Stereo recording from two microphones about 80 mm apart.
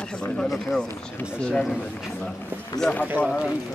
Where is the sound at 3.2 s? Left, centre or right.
Left.